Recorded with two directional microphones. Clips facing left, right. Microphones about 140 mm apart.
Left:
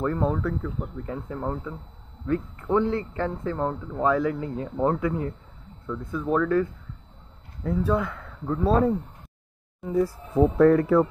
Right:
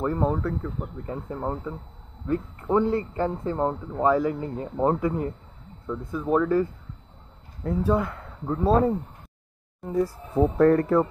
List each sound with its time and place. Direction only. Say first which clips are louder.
0.0 s a man's voice: even; 15° right (ahead or behind)
0.4 s a man's voice: even; 5° right (ahead or behind)
4.0 s speech: right 1 dB; 5° right (ahead or behind)
4.7 s a man's voice: right 1 dB; 15° right (ahead or behind)
7.6 s a man's voice: right 1 dB; 5° right (ahead or behind)